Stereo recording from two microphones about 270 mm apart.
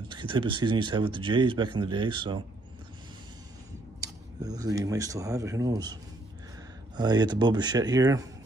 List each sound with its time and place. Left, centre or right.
0.1 s speech: centre
4.0 s speech: centre
7.0 s speech: centre